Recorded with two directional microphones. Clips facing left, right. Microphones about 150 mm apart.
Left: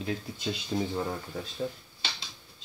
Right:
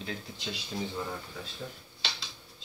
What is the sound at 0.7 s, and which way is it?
Speech, 35° left (ahead or behind).